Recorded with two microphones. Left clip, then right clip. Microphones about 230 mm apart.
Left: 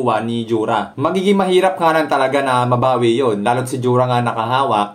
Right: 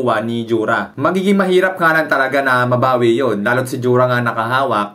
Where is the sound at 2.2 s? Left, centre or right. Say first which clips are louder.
Right 1 dB; right.